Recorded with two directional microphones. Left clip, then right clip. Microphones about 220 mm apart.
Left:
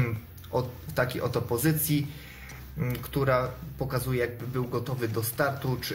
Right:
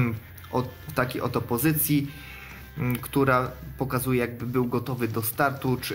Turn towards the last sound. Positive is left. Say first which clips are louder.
# right 3 dB
turn(degrees=-30)  # may be behind; listen again after turning